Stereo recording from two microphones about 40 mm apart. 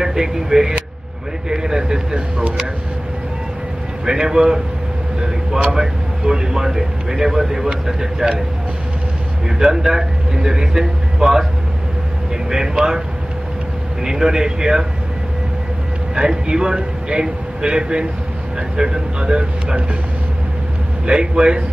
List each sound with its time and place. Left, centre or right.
0.0 s speech: centre
4.0 s speech: centre
5.7 s speech: centre
9.6 s speech: centre
12.4 s speech: centre
14.0 s speech: centre
16.2 s a man's voice: centre
21.0 s speech: right